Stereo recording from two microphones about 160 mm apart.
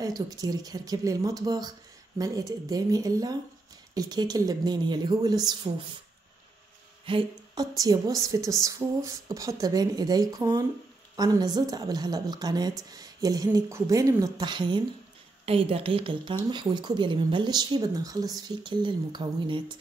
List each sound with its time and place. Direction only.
0.0 s a woman's voice: 25° right (ahead or behind)
7.1 s a sound: 35° right (ahead or behind)
7.7 s a woman's voice: 20° right (ahead or behind)